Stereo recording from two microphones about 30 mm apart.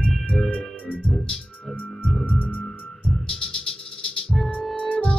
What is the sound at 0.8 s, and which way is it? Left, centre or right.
Music, left.